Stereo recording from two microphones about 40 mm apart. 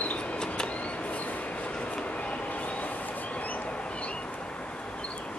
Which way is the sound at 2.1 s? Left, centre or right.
Left.